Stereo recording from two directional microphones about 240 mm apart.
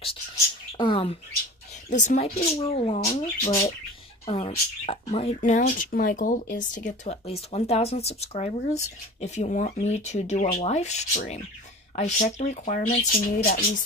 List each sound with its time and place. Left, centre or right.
0.7 s speech: left